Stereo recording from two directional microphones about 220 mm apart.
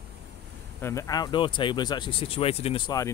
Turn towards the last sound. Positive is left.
turn(degrees=15)  # may be behind; listen again after turning